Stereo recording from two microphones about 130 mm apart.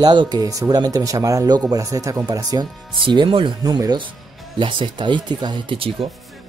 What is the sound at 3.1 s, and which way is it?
Speech, 40° right (ahead or behind).